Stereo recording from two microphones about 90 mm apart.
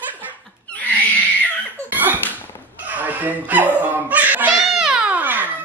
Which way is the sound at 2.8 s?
20° right (ahead or behind).